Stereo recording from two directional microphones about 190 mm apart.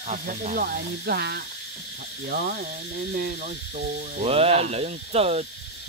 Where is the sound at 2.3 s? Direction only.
45° right (ahead or behind).